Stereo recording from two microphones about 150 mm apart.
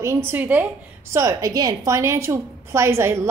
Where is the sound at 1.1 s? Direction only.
20° right (ahead or behind).